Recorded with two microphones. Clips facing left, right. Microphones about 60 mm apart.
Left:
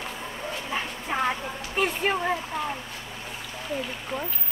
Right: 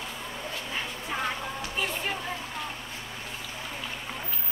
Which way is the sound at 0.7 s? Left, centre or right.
Left.